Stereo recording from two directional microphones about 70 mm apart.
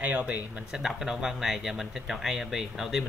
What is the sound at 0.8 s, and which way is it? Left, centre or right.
Speech, centre.